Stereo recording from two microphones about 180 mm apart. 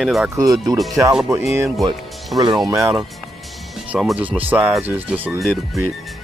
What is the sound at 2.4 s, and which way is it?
Speech, 20° right (ahead or behind).